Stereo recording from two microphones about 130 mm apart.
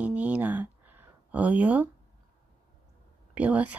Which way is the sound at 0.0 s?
10° right (ahead or behind).